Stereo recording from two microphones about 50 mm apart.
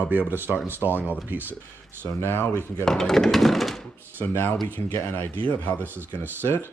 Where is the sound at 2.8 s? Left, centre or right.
Centre.